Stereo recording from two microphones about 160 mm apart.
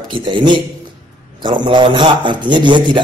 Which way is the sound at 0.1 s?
30° right (ahead or behind).